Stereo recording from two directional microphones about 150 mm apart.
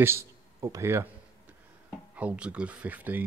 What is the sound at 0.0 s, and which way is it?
A man's voice, 15° right (ahead or behind).